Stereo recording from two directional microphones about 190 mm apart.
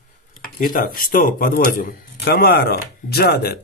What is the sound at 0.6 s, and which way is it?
Speech, 45° left (ahead or behind).